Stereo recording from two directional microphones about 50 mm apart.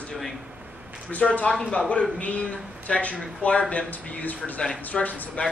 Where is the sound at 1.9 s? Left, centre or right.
Left.